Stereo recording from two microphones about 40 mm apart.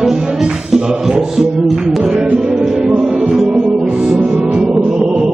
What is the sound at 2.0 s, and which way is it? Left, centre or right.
Music, right.